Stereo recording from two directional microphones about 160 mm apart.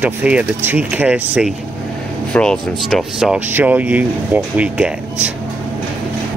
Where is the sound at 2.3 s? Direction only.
5° left (ahead or behind).